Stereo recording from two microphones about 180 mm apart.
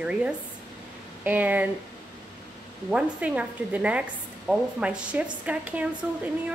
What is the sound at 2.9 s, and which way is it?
Speech, 5° right (ahead or behind).